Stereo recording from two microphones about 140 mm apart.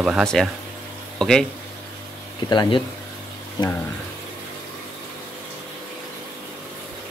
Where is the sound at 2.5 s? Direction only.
35° left (ahead or behind).